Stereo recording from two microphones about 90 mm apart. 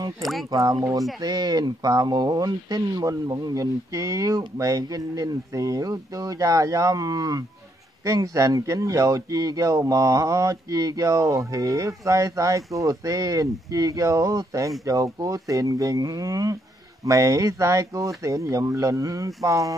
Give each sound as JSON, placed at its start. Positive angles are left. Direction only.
{"t": 0.2, "sound": "speech", "side_deg": 0}
{"t": 0.5, "sound": "speech", "side_deg": -40}